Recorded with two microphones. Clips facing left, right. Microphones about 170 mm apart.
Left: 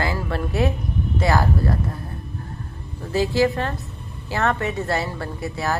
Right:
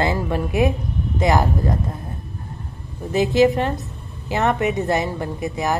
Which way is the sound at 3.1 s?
20° right (ahead or behind).